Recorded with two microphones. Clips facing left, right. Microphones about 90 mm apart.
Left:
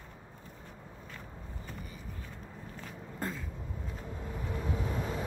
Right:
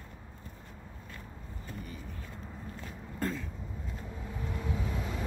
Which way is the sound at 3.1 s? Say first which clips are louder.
Right 4 dB; 15° left (ahead or behind).